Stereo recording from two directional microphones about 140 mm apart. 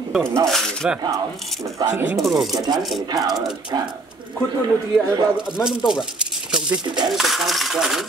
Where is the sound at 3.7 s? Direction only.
25° right (ahead or behind).